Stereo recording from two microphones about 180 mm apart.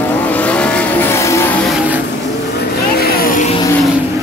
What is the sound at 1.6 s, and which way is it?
Vehicle, centre (ahead or behind).